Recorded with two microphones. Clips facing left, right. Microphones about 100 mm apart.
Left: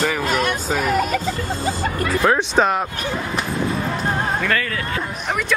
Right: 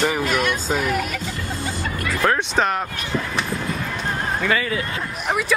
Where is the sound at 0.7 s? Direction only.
40° left (ahead or behind).